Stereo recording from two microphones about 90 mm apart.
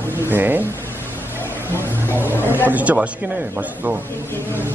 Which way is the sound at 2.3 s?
25° left (ahead or behind).